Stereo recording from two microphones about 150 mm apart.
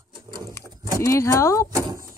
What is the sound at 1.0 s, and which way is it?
Speech, 20° left (ahead or behind).